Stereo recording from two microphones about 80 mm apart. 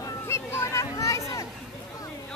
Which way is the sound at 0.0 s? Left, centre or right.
Left.